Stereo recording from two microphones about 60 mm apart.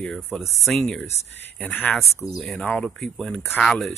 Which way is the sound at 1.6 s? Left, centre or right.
Left.